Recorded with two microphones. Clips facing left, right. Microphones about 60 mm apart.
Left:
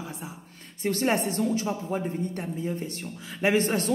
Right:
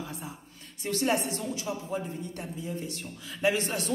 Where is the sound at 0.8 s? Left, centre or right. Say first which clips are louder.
Left 3 dB; left.